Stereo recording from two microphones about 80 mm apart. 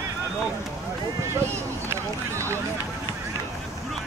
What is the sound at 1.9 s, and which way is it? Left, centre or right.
Run, right.